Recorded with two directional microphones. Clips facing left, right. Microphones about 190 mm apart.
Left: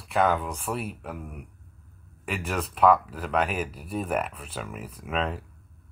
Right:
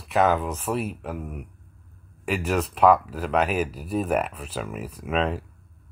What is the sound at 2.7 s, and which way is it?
Speech, 5° right (ahead or behind).